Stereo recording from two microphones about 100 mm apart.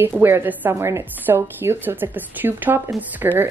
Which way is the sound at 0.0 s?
20° right (ahead or behind).